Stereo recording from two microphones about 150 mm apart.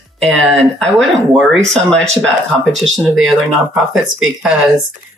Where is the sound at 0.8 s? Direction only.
5° left (ahead or behind).